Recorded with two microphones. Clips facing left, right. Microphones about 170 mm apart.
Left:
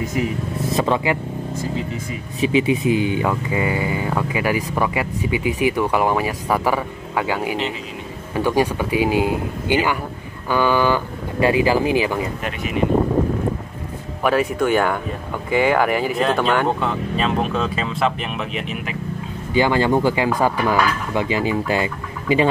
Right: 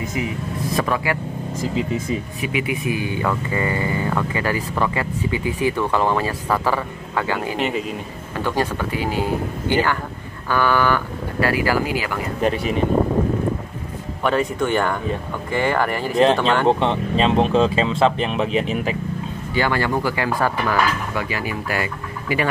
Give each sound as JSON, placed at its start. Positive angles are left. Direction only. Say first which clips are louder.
{"t": 0.7, "sound": "speech", "louder": "left 2 dB", "side_deg": 25}
{"t": 2.4, "sound": "speech", "louder": "left 9 dB", "side_deg": 25}
{"t": 7.5, "sound": "speech", "louder": "right 2 dB", "side_deg": -55}
{"t": 8.4, "sound": "speech", "louder": "left 4 dB", "side_deg": 15}
{"t": 12.4, "sound": "speech", "louder": "right 6 dB", "side_deg": -35}
{"t": 14.2, "sound": "speech", "louder": "left 2 dB", "side_deg": 5}
{"t": 16.6, "sound": "speech", "louder": "right 3 dB", "side_deg": -30}
{"t": 19.5, "sound": "speech", "louder": "left 4 dB", "side_deg": 20}